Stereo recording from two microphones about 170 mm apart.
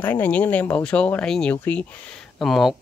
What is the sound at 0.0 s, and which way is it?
Speech, 10° left (ahead or behind).